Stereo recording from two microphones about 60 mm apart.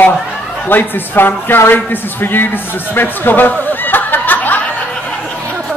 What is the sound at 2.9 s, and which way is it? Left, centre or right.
Music, left.